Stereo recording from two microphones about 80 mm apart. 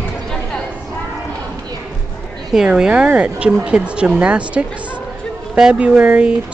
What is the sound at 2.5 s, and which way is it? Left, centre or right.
Speech, centre.